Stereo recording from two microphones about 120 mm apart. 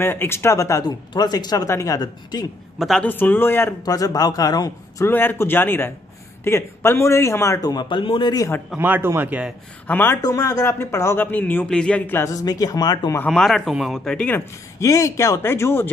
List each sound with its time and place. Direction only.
0.0 s speech: 20° left (ahead or behind)
2.8 s speech: centre (ahead or behind)
3.1 s speech: 15° left (ahead or behind)
3.8 s a man's voice: 30° left (ahead or behind)
5.1 s a man's voice: 15° left (ahead or behind); by 8.5 s 40° left (ahead or behind)
8.7 s speech: 15° right (ahead or behind)
9.8 s speech: 15° left (ahead or behind)
10.2 s speech: 25° left (ahead or behind); by 12.2 s 10° left (ahead or behind)
12.2 s a man's voice: 30° left (ahead or behind)
13.2 s speech: 5° left (ahead or behind)
14.8 s speech: 25° left (ahead or behind)